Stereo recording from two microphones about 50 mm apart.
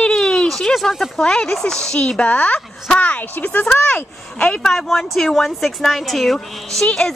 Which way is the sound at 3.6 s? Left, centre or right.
Left.